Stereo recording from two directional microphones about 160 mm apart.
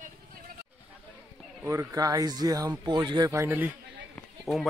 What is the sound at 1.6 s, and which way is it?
Speech, 15° right (ahead or behind).